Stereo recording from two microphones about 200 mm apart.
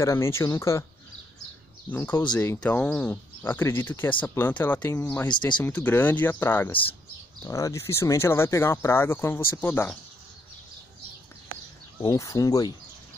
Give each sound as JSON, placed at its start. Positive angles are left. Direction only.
{"t": 0.0, "sound": "speech", "side_deg": 15}
{"t": 1.9, "sound": "speech", "side_deg": 10}
{"t": 5.3, "sound": "speech", "side_deg": 20}
{"t": 5.6, "sound": "speech", "side_deg": 5}
{"t": 12.0, "sound": "speech", "side_deg": 15}